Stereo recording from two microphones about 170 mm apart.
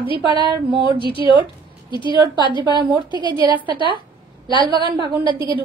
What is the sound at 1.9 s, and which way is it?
Speech, 30° left (ahead or behind).